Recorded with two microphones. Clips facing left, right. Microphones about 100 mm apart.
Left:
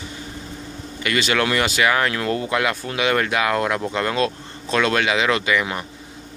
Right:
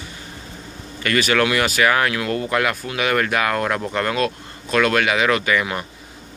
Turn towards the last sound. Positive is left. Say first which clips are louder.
# right 1 dB
turn(degrees=15)  # may be behind; listen again after turning